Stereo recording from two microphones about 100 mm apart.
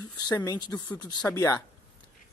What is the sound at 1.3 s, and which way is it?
Speech, 30° left (ahead or behind).